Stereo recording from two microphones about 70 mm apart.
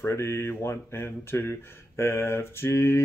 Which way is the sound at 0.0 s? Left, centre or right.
Left.